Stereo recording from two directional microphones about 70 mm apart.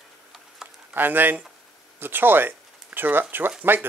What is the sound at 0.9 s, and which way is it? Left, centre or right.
Speech, right.